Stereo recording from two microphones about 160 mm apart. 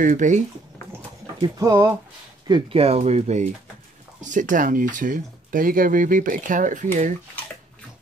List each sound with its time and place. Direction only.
0.0 s speech: 50° right (ahead or behind)
1.4 s speech: 20° right (ahead or behind)
2.4 s speech: 30° right (ahead or behind); by 7.1 s 50° right (ahead or behind)